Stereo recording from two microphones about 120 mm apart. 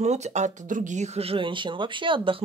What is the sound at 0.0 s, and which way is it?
Speech, 70° right (ahead or behind).